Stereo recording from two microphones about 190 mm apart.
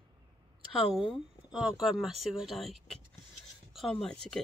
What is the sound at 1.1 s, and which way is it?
Speech, 5° right (ahead or behind).